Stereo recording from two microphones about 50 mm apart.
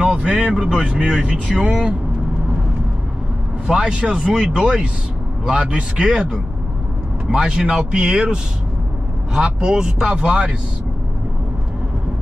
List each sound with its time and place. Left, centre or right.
0.0 s vehicle: centre
0.4 s a man's voice: centre
3.6 s a man's voice: centre
6.0 s speech: centre
10.0 s a man's voice: right